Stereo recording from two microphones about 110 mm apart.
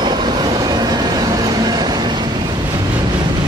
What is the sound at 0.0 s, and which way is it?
Train, 40° right (ahead or behind).